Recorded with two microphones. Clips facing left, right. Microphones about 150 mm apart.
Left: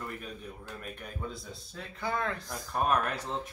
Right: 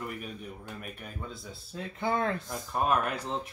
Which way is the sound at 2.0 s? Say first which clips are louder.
Right 4 dB; 25° right (ahead or behind).